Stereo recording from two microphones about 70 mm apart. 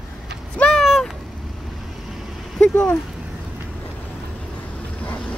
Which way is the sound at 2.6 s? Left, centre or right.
Centre.